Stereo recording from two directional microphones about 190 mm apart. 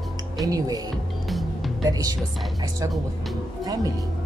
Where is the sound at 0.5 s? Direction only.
20° right (ahead or behind).